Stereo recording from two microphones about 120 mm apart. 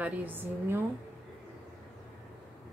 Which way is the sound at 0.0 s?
15° right (ahead or behind).